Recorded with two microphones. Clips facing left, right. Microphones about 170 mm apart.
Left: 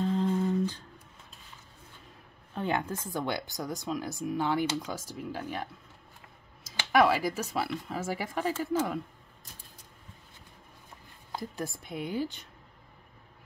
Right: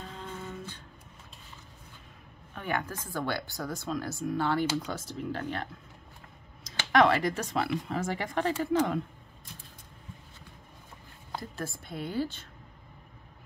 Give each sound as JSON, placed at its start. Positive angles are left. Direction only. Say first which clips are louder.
{"t": 0.0, "sound": "music", "louder": "left 13 dB", "side_deg": 30}
{"t": 2.5, "sound": "a woman's voice", "louder": "left 3 dB", "side_deg": 25}
{"t": 11.3, "sound": "speech", "louder": "left 1 dB", "side_deg": 15}